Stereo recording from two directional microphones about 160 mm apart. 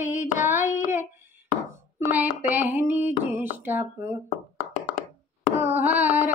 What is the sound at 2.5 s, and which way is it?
Carnatic music, 10° right (ahead or behind).